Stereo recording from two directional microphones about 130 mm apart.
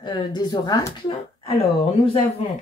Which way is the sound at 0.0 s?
35° left (ahead or behind).